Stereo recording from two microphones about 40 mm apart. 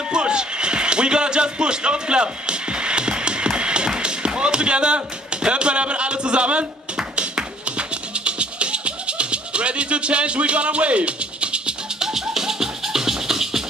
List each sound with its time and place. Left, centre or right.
0.1 s basketball bounce: right
4.4 s speech: right
7.2 s music: right
12.0 s music: centre